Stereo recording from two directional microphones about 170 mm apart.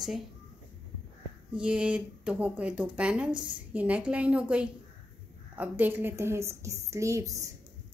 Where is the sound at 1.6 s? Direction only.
5° right (ahead or behind).